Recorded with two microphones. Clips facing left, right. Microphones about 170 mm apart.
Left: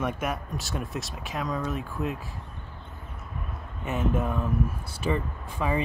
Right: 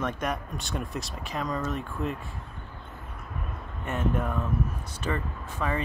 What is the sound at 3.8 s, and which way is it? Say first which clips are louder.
Speech: left 1 dB; 5° left (ahead or behind).